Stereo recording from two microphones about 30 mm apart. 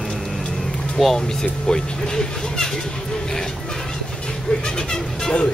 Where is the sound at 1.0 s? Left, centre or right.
Centre.